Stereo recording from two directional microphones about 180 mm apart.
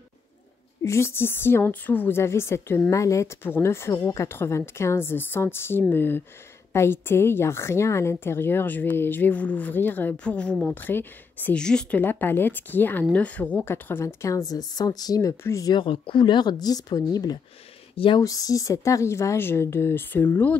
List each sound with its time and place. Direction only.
0.8 s a woman's voice: 15° left (ahead or behind)